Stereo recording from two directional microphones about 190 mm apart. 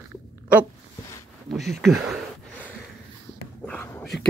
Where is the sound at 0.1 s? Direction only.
10° right (ahead or behind).